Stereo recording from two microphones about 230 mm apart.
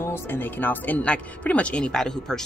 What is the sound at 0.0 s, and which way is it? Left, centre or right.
Speech, centre.